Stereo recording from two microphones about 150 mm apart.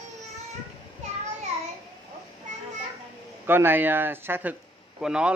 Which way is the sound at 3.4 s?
15° right (ahead or behind).